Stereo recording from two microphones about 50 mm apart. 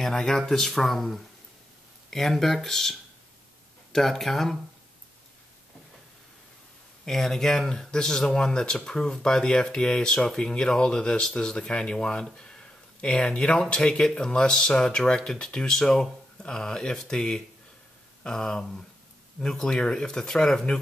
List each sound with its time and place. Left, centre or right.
0.0 s speech: centre
7.1 s speech: centre